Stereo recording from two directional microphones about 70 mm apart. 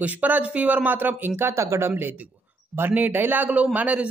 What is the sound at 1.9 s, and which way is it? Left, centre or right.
Speech, right.